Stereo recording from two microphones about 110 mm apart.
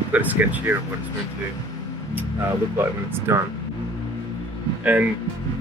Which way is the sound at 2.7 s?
20° right (ahead or behind).